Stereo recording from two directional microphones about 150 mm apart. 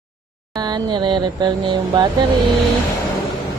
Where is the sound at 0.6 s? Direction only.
30° right (ahead or behind).